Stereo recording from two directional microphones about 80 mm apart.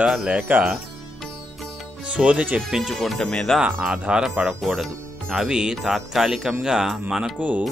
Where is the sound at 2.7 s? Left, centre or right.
Centre.